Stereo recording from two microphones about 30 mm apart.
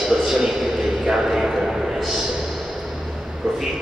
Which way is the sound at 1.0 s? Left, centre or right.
Centre.